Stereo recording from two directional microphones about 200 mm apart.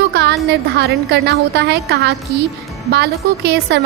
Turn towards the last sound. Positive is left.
turn(degrees=-55)  # may be behind; listen again after turning